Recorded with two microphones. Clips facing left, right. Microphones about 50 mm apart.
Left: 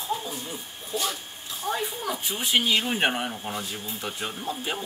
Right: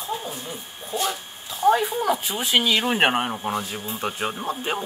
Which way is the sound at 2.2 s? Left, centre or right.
Right.